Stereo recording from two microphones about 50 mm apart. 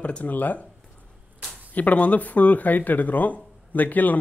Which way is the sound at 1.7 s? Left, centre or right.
Left.